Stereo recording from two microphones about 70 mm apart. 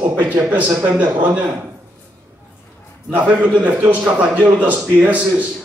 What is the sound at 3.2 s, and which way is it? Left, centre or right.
A man's voice, right.